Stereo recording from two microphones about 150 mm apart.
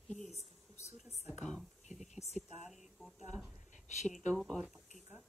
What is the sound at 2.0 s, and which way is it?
Speech, 50° left (ahead or behind).